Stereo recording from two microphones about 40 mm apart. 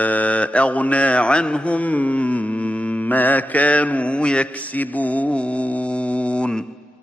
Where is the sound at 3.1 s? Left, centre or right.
Left.